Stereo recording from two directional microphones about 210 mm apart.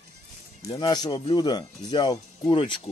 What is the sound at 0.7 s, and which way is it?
Speech, 20° left (ahead or behind).